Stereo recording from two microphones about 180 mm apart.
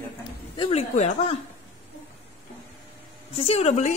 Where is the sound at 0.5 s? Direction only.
35° left (ahead or behind).